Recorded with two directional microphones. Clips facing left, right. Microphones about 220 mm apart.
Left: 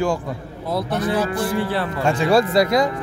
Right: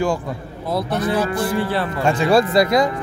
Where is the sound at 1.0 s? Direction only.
10° left (ahead or behind).